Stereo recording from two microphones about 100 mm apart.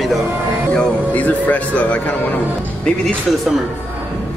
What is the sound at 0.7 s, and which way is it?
A man's voice, 10° left (ahead or behind).